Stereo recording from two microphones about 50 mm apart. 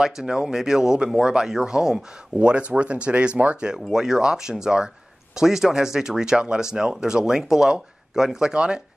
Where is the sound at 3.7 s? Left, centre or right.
Centre.